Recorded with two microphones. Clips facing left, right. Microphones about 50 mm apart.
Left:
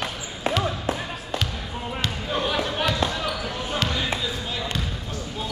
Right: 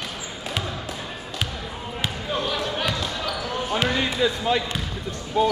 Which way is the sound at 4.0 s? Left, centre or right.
Right.